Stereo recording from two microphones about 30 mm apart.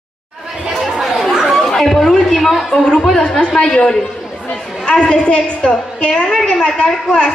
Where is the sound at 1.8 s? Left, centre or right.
Centre.